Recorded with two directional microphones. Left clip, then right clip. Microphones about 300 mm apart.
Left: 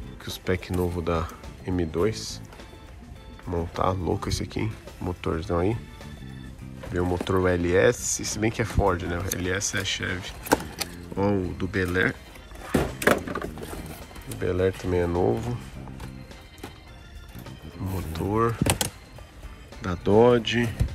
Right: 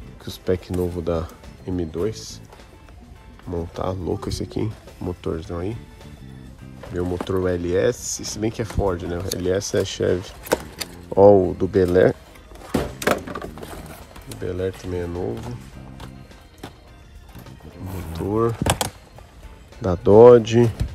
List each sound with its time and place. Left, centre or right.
0.2 s speech: centre
3.4 s speech: centre
6.9 s speech: centre
10.4 s keys jangling: centre
11.1 s speech: centre
12.6 s a sound: centre
17.5 s music: centre
18.1 s vehicle: centre
20.1 s speech: left
20.4 s speech: right